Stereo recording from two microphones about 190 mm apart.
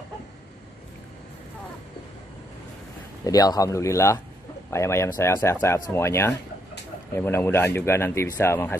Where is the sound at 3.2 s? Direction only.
20° left (ahead or behind).